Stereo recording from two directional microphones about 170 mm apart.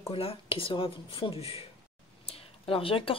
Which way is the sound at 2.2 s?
35° left (ahead or behind).